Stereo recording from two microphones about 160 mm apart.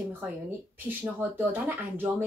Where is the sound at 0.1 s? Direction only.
10° right (ahead or behind).